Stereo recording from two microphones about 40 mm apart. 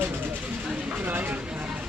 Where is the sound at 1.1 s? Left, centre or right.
Right.